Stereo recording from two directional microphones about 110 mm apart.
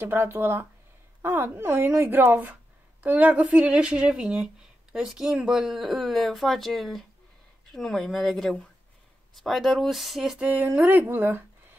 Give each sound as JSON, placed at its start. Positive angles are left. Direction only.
{"t": 0.0, "sound": "speech", "side_deg": -20}